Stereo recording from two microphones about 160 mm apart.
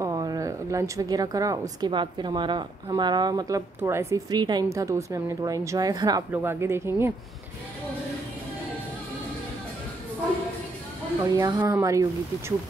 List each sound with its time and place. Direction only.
0.0 s a sound: 25° right (ahead or behind)
1.8 s a woman's voice: 30° right (ahead or behind)
11.3 s a woman's voice: 20° right (ahead or behind)